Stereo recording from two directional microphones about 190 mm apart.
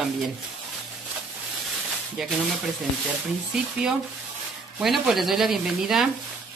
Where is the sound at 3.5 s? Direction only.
Centre (ahead or behind).